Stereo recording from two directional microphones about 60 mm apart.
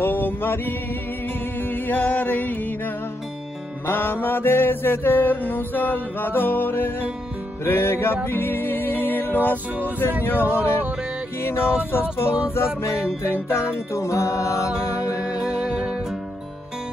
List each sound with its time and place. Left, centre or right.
0.0 s music: left
3.8 s mantra: left
8.3 s music: left
9.8 s mantra: left
12.8 s music: left
15.3 s music: centre